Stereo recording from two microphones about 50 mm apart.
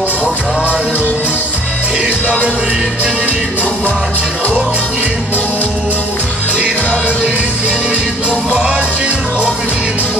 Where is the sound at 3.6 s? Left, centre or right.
Left.